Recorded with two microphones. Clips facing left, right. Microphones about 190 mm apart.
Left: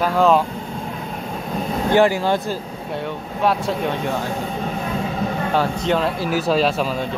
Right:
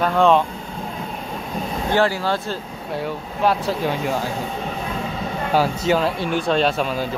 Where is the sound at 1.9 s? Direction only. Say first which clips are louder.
Left 4 dB; 15° left (ahead or behind).